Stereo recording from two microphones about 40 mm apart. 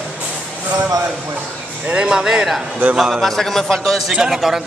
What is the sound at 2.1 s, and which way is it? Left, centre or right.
Speech, centre.